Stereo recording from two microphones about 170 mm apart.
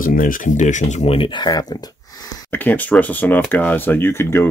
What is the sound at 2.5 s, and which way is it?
Speech, 10° left (ahead or behind).